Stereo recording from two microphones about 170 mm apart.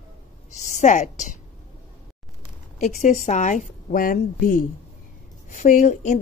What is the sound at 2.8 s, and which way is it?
Speech, 45° left (ahead or behind).